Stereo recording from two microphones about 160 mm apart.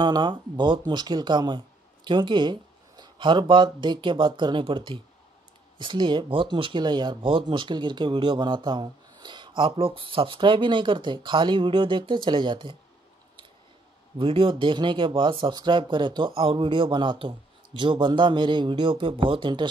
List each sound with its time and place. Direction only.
0.0 s speech: 30° right (ahead or behind)
14.1 s speech: 35° right (ahead or behind)